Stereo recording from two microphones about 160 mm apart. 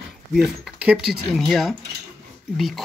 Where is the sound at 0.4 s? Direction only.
5° right (ahead or behind).